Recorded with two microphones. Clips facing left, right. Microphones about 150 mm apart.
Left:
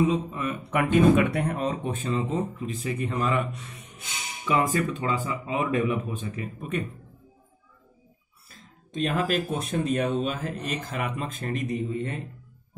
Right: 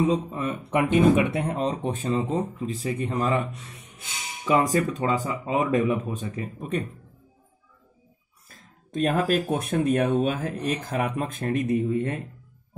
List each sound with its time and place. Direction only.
0.1 s speech: 35° right (ahead or behind)
4.5 s speech: 35° right (ahead or behind)
8.5 s speech: 45° right (ahead or behind)